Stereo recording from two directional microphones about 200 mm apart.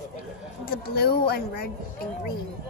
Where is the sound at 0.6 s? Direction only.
50° left (ahead or behind).